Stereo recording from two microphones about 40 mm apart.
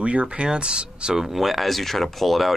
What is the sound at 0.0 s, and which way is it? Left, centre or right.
Speech, right.